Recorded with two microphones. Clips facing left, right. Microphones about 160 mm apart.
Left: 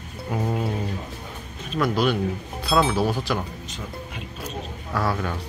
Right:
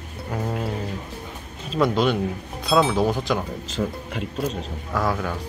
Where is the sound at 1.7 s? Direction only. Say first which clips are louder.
Right 2 dB; 25° right (ahead or behind).